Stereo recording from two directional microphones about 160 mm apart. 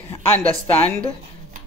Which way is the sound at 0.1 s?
15° left (ahead or behind).